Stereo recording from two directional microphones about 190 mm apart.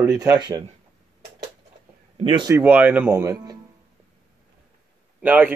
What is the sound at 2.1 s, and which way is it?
Speech, 25° right (ahead or behind).